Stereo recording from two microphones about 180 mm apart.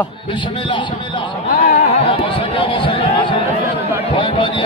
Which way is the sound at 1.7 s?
35° left (ahead or behind).